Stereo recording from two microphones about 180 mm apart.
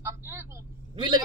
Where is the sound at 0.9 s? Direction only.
25° right (ahead or behind).